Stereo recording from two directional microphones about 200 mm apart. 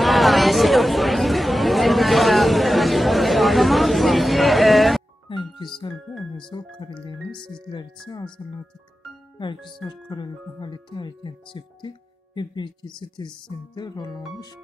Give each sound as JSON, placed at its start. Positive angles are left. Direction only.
{"t": 0.0, "sound": "chatter", "side_deg": 0}
{"t": 5.3, "sound": "music", "side_deg": 25}
{"t": 6.5, "sound": "speech", "side_deg": 25}
{"t": 8.4, "sound": "speech", "side_deg": 20}
{"t": 9.8, "sound": "speech", "side_deg": 20}